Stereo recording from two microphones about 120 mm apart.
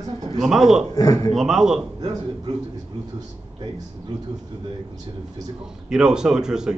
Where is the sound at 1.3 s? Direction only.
5° right (ahead or behind).